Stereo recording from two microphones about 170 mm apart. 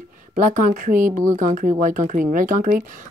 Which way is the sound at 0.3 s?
50° right (ahead or behind).